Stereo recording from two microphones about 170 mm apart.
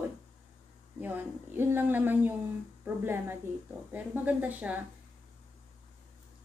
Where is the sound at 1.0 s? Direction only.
10° right (ahead or behind).